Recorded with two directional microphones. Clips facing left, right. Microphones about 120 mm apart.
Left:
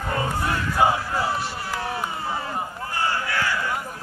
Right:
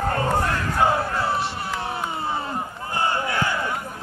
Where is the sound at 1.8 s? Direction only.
25° right (ahead or behind).